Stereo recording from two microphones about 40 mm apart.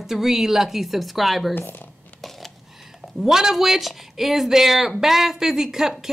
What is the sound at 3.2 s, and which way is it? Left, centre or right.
Speech, centre.